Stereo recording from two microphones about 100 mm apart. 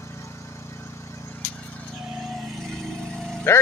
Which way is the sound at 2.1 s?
Centre (ahead or behind).